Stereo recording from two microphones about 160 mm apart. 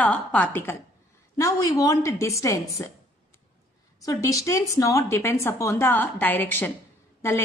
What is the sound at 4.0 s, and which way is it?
A woman's voice, 20° left (ahead or behind).